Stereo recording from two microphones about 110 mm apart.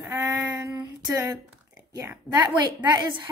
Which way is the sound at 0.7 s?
30° right (ahead or behind).